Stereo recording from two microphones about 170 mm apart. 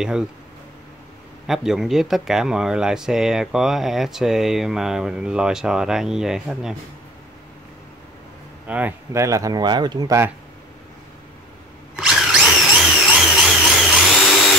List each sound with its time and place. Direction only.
1.5 s speech: centre (ahead or behind)
8.6 s speech: 10° right (ahead or behind)
12.1 s a sound: 5° right (ahead or behind)